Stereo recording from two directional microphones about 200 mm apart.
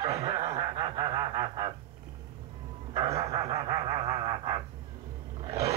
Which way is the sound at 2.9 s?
30° right (ahead or behind).